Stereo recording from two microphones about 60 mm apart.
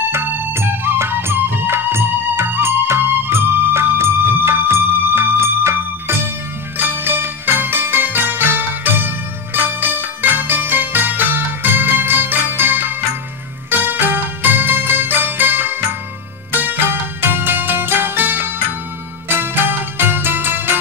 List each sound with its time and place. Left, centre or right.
0.1 s music: right